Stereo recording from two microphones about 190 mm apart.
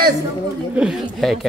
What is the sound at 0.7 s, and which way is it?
Speech, 5° right (ahead or behind).